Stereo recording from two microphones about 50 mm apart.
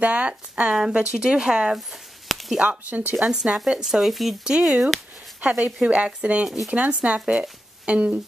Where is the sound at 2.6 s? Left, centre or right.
Right.